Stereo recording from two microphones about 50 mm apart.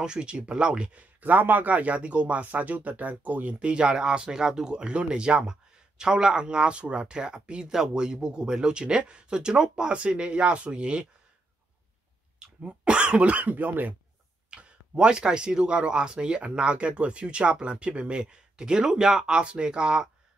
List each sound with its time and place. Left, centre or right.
0.0 s speech: centre
1.2 s speech: right
12.6 s speech: centre; by 13.9 s right
14.5 s speech: centre